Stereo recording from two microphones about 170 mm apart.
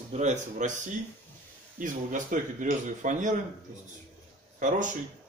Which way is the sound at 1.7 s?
50° right (ahead or behind).